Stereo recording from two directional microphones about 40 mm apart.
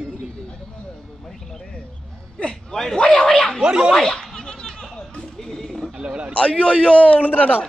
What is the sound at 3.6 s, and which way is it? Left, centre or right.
Speech, right.